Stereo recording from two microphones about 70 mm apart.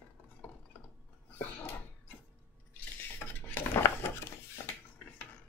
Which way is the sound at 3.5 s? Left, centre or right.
Left.